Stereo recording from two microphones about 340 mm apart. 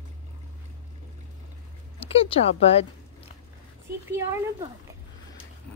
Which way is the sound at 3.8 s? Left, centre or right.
Centre.